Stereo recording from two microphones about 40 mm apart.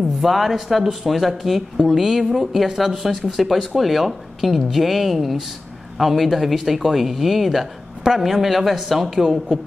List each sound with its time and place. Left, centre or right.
0.2 s a woman's voice: centre